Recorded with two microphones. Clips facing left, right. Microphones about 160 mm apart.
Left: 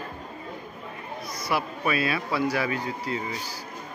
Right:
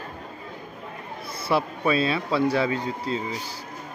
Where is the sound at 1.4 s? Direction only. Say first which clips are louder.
Right 4 dB; 25° right (ahead or behind).